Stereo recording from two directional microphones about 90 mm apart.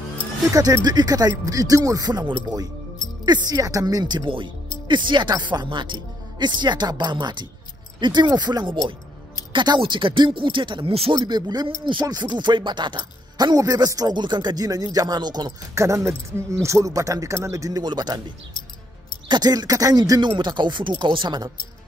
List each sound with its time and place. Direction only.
0.5 s speech: 40° right (ahead or behind)
4.8 s speech: 60° right (ahead or behind)
9.5 s speech: 60° right (ahead or behind); by 11.1 s 80° right
11.1 s speech: 50° right (ahead or behind)
14.1 s speech: 55° right (ahead or behind)
15.7 s speech: 35° right (ahead or behind); by 18.2 s 50° right (ahead or behind)
19.2 s speech: 50° right (ahead or behind)